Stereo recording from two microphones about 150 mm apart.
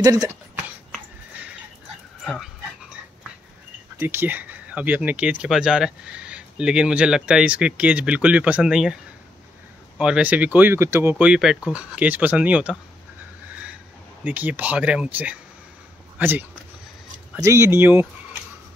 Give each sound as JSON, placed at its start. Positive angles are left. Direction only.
{"t": 0.0, "sound": "speech", "side_deg": -25}
{"t": 2.2, "sound": "dog", "side_deg": 0}
{"t": 4.0, "sound": "speech", "side_deg": -15}
{"t": 11.2, "sound": "speech", "side_deg": -5}
{"t": 14.2, "sound": "speech", "side_deg": -10}